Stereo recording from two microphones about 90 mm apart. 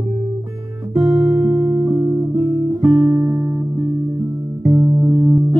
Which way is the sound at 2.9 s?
20° right (ahead or behind).